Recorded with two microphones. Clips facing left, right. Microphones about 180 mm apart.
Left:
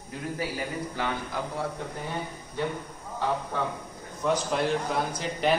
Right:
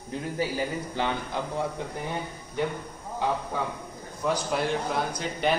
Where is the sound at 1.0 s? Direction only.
25° right (ahead or behind).